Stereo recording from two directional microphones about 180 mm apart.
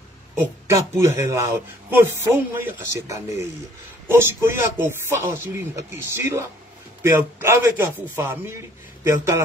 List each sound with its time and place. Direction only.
0.4 s a man's voice: 15° right (ahead or behind)